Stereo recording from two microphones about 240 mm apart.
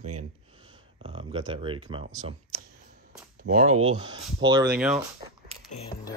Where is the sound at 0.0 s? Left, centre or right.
Right.